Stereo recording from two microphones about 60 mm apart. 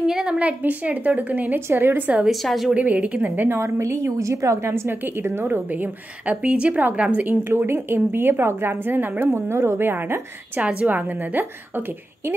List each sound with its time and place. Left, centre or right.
0.0 s a woman's voice: centre; by 2.0 s right
2.2 s a woman's voice: centre
2.7 s a woman's voice: right
3.4 s a woman's voice: right
5.7 s a woman's voice: right
7.2 s a woman's voice: right
9.3 s a woman's voice: right
10.6 s a woman's voice: right